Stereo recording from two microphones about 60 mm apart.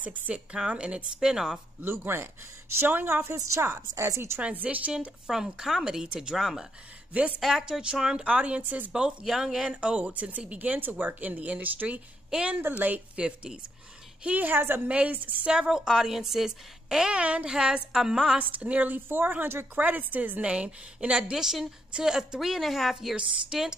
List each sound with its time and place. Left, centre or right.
0.0 s a woman's voice: centre
1.8 s a woman's voice: right
3.9 s a woman's voice: right
4.4 s speech: right
5.3 s a woman's voice: centre
7.1 s speech: right
7.3 s a woman's voice: centre
7.8 s speech: centre
8.9 s speech: centre
14.2 s a woman's voice: right
15.4 s a woman's voice: centre
18.4 s speech: right
18.9 s a woman's voice: right; by 23.7 s centre